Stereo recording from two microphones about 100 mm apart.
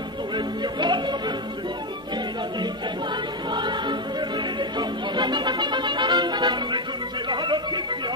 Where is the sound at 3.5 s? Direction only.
50° right (ahead or behind).